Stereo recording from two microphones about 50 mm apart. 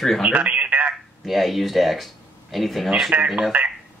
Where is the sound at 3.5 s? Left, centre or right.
Right.